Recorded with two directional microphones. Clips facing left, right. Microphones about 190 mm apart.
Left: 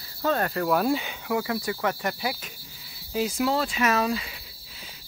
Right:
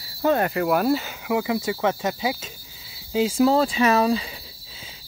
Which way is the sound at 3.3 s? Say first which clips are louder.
Right 8 dB; 35° right (ahead or behind).